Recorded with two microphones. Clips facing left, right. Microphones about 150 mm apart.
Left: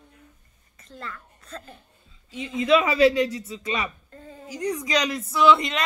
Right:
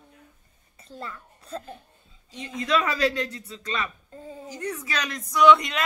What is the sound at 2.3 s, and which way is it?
A woman's voice, centre (ahead or behind).